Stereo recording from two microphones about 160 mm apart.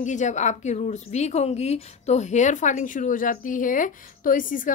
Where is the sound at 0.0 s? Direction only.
50° left (ahead or behind).